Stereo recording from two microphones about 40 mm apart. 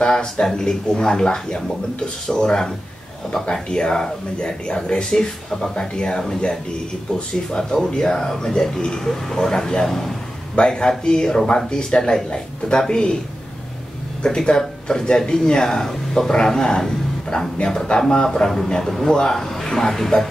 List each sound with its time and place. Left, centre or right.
0.0 s speech: centre
10.5 s speech: left
14.2 s a man's voice: left